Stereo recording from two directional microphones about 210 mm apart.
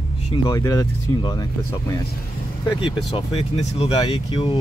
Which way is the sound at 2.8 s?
25° left (ahead or behind).